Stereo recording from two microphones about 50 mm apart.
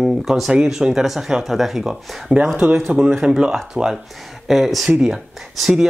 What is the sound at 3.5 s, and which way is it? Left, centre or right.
Speech, centre.